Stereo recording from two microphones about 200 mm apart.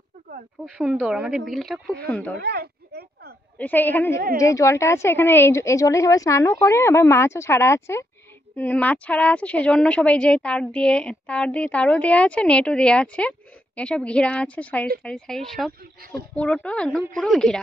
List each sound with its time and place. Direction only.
0.7 s a woman's voice: 5° right (ahead or behind)
2.4 s a sound: 55° right (ahead or behind)
3.5 s a woman's voice: 10° left (ahead or behind)